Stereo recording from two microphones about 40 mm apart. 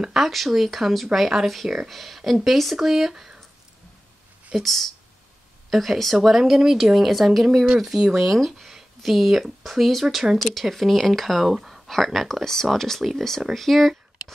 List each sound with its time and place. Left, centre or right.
0.1 s speech: centre
4.6 s speech: centre
7.6 s speech: centre
7.9 s speech: centre
10.6 s speech: centre